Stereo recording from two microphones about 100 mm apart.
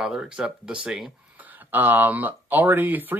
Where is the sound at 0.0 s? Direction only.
5° right (ahead or behind).